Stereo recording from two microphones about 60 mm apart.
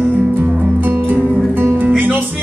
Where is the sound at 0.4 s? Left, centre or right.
Right.